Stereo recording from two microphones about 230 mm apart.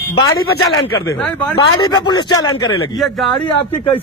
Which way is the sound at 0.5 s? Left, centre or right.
Left.